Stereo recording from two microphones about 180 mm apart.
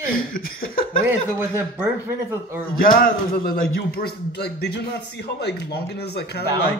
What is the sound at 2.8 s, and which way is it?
Speech, 50° left (ahead or behind).